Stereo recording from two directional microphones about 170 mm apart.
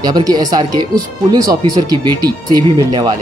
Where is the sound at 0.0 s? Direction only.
25° right (ahead or behind).